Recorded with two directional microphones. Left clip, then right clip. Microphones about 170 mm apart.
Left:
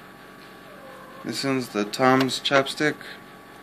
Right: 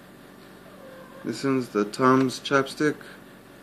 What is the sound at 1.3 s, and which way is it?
Speech, 5° right (ahead or behind).